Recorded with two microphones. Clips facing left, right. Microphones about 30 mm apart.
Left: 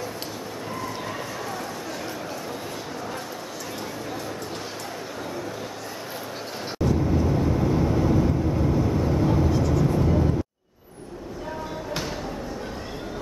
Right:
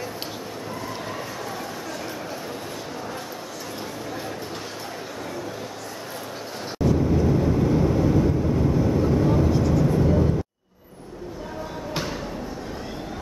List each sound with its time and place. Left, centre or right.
6.8 s vehicle: centre